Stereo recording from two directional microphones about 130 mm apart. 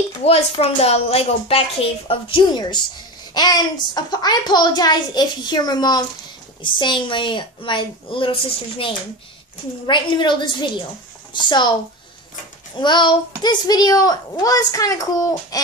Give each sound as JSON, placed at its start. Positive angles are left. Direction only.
{"t": 0.2, "sound": "a child's voice", "side_deg": 50}
{"t": 12.7, "sound": "a child's voice", "side_deg": 35}